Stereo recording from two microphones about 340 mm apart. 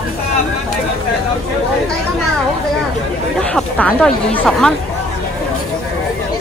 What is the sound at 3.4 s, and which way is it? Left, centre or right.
Speech, centre.